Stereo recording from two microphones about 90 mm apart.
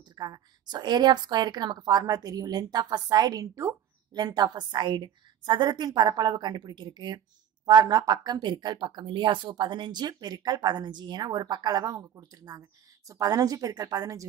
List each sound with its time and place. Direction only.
0.1 s speech: 50° right (ahead or behind)